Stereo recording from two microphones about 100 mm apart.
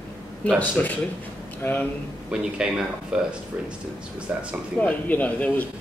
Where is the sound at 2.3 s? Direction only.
10° right (ahead or behind).